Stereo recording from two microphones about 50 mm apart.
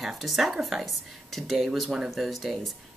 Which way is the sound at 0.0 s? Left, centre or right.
Centre.